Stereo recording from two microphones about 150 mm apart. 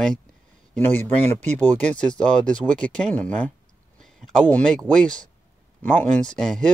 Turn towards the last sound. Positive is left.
turn(degrees=5)  # may be behind; listen again after turning